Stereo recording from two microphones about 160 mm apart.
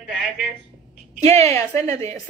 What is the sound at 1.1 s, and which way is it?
Speech, 45° right (ahead or behind).